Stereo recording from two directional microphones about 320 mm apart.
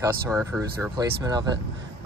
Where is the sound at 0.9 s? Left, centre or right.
Centre.